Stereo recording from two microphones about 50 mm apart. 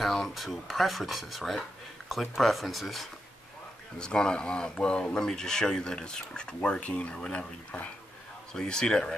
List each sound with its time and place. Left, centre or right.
0.0 s speech: centre
4.0 s speech: centre